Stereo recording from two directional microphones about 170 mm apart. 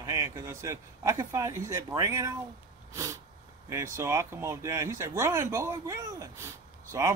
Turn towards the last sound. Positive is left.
turn(degrees=-15)  # may be behind; listen again after turning